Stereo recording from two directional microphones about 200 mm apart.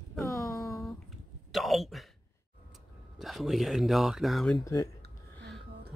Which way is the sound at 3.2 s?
Centre (ahead or behind).